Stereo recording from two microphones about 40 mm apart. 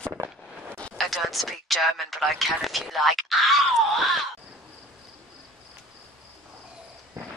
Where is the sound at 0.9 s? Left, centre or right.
Centre.